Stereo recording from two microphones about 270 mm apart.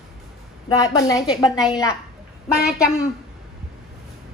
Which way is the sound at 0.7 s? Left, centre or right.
Centre.